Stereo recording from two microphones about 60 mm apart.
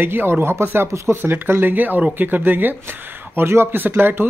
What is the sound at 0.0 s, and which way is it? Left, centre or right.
Speech, right.